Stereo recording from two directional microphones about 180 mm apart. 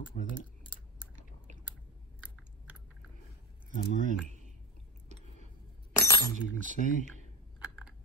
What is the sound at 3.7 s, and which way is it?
Speech, 50° left (ahead or behind).